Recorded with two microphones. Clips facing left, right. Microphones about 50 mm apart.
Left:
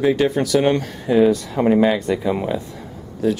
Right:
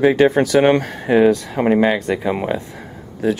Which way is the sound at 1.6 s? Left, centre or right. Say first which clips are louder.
Left 1 dB; centre.